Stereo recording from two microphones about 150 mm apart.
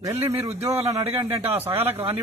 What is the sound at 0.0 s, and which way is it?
A man's voice, 20° right (ahead or behind).